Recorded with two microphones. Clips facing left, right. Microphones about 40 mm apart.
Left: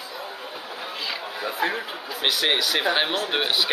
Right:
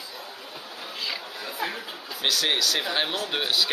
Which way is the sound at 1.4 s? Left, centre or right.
Left.